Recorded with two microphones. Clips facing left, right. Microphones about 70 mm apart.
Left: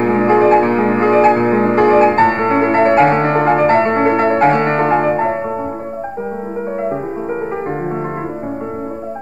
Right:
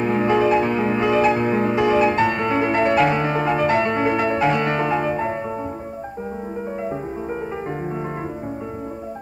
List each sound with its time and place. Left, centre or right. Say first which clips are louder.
0.0 s music: left 6 dB; left